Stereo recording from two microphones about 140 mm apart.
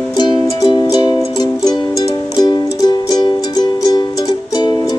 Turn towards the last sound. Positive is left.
turn(degrees=30)  # may be behind; listen again after turning